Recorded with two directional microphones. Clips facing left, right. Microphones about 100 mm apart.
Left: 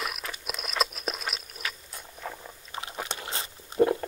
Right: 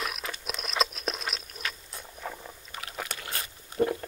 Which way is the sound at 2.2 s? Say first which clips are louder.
Even; centre (ahead or behind).